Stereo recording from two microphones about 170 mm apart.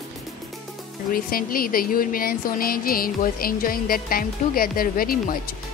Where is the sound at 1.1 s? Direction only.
60° left (ahead or behind).